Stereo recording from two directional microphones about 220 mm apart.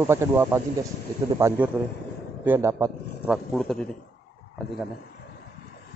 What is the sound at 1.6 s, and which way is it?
A man's voice, 5° right (ahead or behind).